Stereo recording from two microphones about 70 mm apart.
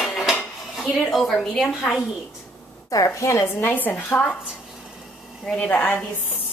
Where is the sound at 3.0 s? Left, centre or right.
Left.